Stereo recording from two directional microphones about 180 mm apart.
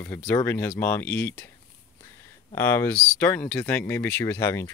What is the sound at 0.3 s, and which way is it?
Speech, 10° left (ahead or behind).